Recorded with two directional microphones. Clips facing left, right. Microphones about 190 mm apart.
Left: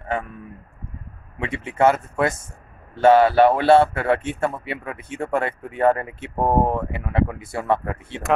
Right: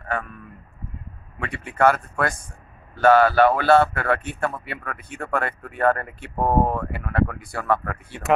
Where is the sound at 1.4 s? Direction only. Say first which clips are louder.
Left 1 dB; 25° left (ahead or behind).